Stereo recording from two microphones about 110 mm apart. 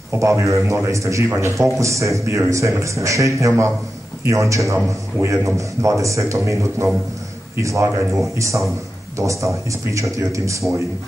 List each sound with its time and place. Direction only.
0.1 s a man's voice: 25° right (ahead or behind)